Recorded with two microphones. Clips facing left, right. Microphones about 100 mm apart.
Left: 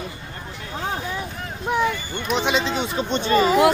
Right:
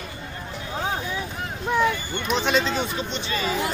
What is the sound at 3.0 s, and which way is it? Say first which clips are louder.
Speech: left 10 dB; 50° left (ahead or behind).